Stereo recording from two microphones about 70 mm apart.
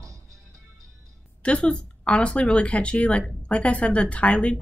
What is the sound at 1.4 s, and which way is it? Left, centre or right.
Speech, centre.